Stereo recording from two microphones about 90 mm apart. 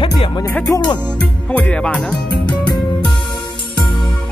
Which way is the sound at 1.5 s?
15° left (ahead or behind).